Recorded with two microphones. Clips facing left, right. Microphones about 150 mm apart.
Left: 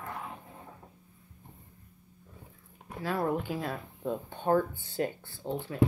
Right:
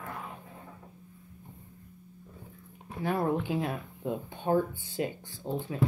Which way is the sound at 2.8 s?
20° right (ahead or behind).